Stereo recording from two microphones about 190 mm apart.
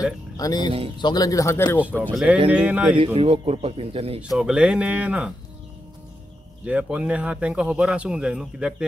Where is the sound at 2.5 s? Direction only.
5° right (ahead or behind).